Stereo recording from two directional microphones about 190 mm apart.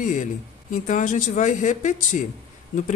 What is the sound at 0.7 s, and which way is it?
A woman's voice, 40° left (ahead or behind).